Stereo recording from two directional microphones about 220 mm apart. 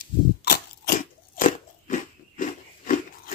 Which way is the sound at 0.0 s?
40° left (ahead or behind).